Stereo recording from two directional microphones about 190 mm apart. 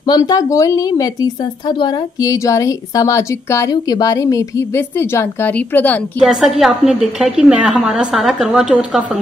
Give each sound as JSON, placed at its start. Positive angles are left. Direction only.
{"t": 0.0, "sound": "speech", "side_deg": 20}
{"t": 6.2, "sound": "a woman's voice", "side_deg": 0}